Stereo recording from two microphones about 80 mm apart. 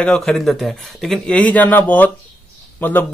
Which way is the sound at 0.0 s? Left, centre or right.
Centre.